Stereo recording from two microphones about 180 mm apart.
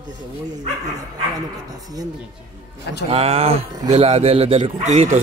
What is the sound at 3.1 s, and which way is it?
Speech, 35° right (ahead or behind).